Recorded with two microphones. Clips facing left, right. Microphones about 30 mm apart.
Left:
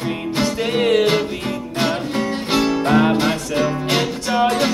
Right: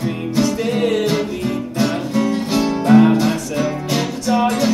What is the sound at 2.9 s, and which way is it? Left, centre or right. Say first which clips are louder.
Music: right 6 dB; left.